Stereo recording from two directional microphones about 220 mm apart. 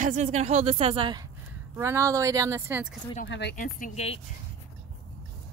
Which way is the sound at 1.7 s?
10° right (ahead or behind).